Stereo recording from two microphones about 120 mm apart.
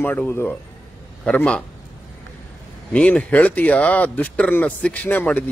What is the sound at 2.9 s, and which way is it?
Speech, 10° left (ahead or behind).